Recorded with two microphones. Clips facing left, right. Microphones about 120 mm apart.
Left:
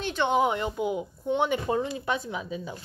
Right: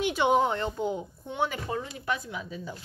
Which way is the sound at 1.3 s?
20° left (ahead or behind).